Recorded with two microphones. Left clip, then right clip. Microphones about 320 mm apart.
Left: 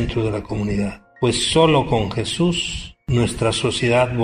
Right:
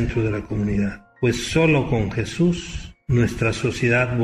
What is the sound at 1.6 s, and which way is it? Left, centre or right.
A man's voice, left.